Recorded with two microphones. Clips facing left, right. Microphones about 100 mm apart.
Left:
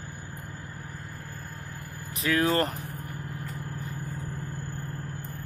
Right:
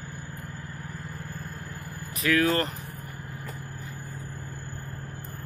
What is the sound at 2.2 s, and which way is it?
Speech, 30° left (ahead or behind).